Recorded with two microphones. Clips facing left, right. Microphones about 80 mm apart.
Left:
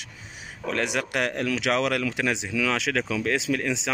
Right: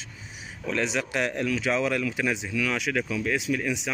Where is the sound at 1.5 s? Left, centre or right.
Left.